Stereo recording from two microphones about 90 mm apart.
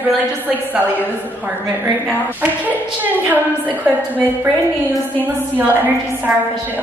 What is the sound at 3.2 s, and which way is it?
A woman's voice, 20° right (ahead or behind).